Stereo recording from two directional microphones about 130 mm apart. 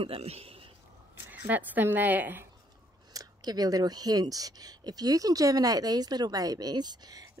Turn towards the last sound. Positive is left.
turn(degrees=-30)  # may be behind; listen again after turning